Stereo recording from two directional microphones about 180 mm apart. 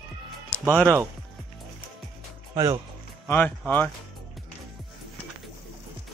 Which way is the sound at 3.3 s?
10° left (ahead or behind).